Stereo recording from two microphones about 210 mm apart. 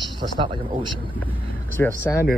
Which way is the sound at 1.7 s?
10° left (ahead or behind).